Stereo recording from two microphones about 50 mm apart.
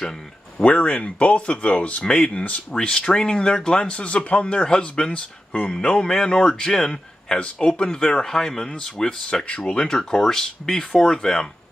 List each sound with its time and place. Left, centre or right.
0.6 s speech: left
9.8 s speech: centre